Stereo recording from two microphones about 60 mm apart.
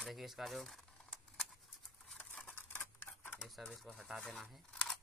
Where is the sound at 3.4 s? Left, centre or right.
Centre.